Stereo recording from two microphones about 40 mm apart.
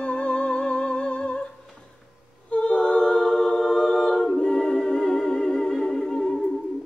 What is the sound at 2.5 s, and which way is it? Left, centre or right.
A capella, left.